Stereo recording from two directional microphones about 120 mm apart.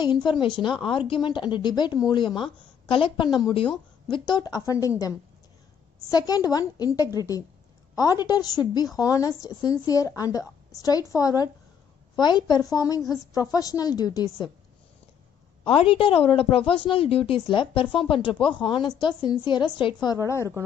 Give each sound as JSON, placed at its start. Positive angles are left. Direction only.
{"t": 0.0, "sound": "a woman's voice", "side_deg": 40}
{"t": 15.6, "sound": "a woman's voice", "side_deg": 50}